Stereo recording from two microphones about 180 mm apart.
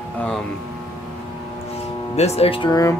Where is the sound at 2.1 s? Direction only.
35° left (ahead or behind); by 3.0 s 20° left (ahead or behind).